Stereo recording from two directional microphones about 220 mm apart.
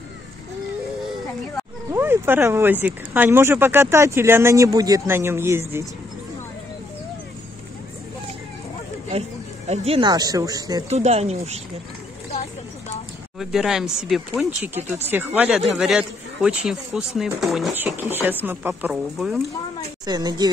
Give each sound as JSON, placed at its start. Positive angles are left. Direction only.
{"t": 1.9, "sound": "speech", "side_deg": -10}
{"t": 9.7, "sound": "speech", "side_deg": -25}
{"t": 10.9, "sound": "speech", "side_deg": -30}
{"t": 13.4, "sound": "speech", "side_deg": 0}
{"t": 20.1, "sound": "speech", "side_deg": -20}